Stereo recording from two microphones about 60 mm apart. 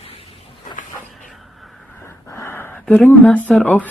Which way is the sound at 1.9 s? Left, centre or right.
Left.